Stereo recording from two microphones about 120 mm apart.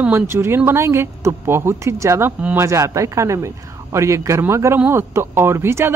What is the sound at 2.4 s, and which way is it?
Speech, 15° right (ahead or behind).